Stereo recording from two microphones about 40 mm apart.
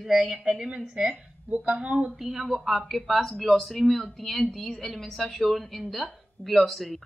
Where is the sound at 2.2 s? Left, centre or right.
Centre.